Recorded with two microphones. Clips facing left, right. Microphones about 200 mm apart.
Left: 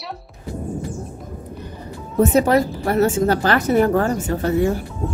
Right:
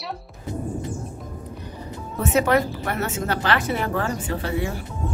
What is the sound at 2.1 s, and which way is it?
A woman's voice, 40° left (ahead or behind).